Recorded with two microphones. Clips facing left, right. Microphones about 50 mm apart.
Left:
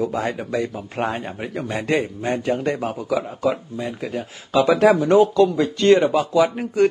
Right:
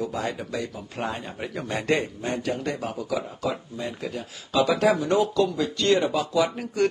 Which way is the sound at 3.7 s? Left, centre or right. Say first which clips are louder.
Left 4 dB; centre.